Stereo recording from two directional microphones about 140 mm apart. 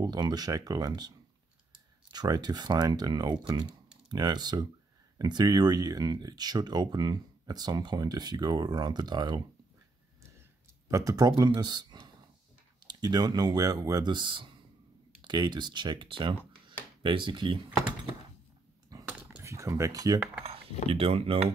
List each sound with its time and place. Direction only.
0.0 s speech: 30° right (ahead or behind)
10.9 s speech: 25° right (ahead or behind)
18.9 s a sound: 25° right (ahead or behind)
20.9 s speech: 40° right (ahead or behind)